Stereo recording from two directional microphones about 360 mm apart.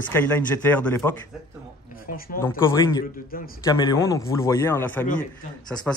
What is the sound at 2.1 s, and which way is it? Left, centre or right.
Speech, left.